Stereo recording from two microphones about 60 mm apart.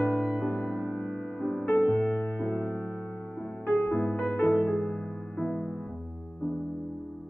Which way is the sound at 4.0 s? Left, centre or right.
Left.